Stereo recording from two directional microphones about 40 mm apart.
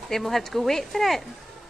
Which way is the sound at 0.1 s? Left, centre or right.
Centre.